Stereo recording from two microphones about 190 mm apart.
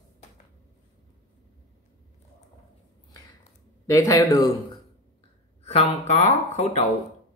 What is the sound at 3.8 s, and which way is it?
Speech, 15° left (ahead or behind).